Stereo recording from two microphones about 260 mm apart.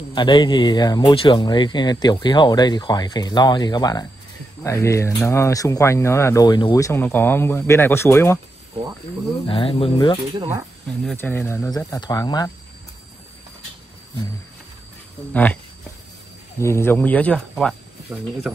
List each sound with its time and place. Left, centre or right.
0.1 s speech: centre
9.5 s speech: left
11.1 s speech: centre
15.3 s speech: centre
18.1 s speech: centre